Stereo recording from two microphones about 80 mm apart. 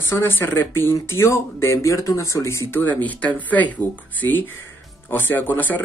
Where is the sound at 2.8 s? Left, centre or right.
Left.